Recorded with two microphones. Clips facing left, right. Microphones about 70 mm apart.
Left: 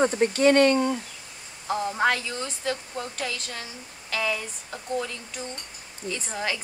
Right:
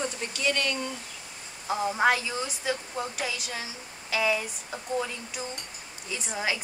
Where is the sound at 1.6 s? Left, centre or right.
Centre.